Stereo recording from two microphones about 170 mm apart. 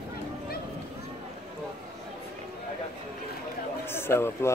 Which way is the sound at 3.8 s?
15° left (ahead or behind).